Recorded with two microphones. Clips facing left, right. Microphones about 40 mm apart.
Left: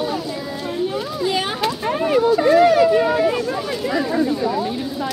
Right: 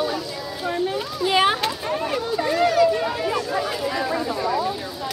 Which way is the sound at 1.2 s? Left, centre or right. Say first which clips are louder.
Right 4 dB; right.